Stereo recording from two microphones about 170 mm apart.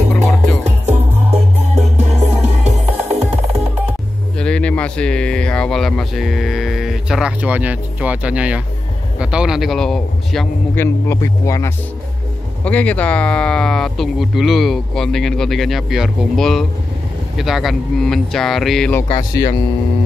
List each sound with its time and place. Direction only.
0.1 s music: centre (ahead or behind)
1.3 s music: 40° right (ahead or behind)
4.4 s speech: 5° left (ahead or behind)
10.8 s speech: 15° left (ahead or behind)
18.9 s speech: 15° left (ahead or behind)